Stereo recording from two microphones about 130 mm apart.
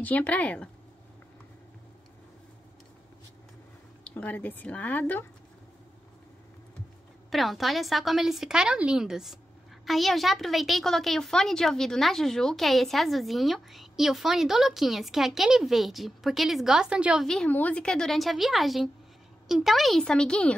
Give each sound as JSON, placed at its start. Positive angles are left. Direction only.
{"t": 0.0, "sound": "speech", "side_deg": 10}
{"t": 4.0, "sound": "speech", "side_deg": 10}
{"t": 7.2, "sound": "a woman's voice", "side_deg": 0}
{"t": 17.3, "sound": "a woman's voice", "side_deg": 10}